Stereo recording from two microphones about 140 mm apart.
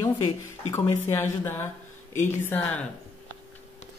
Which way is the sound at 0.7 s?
15° left (ahead or behind).